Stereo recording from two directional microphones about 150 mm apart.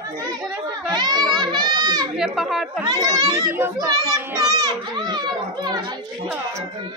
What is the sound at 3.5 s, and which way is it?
Speech, 15° right (ahead or behind).